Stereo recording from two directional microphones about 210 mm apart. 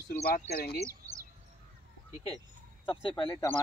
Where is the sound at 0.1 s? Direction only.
45° left (ahead or behind).